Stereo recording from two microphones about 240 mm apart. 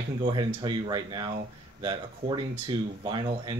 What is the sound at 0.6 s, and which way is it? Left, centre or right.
Speech, centre.